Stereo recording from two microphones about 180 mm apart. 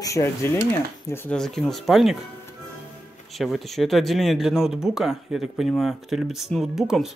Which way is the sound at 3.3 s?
Centre (ahead or behind).